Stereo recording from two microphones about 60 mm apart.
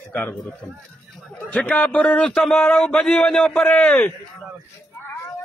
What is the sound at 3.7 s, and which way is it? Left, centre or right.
Speech, centre.